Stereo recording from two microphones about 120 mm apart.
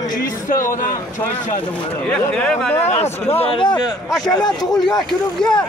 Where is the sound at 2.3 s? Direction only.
5° left (ahead or behind).